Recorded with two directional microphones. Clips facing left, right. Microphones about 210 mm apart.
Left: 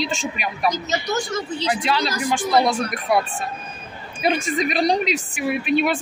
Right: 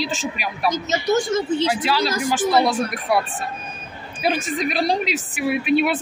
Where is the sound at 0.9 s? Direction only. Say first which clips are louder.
Right 5 dB; 25° right (ahead or behind).